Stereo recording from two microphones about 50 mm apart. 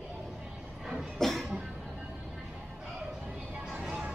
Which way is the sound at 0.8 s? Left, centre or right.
Centre.